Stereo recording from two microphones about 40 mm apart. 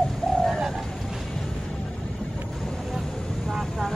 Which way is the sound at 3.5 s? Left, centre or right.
Centre.